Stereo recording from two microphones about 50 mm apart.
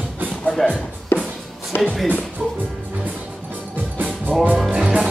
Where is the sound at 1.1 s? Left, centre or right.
Left.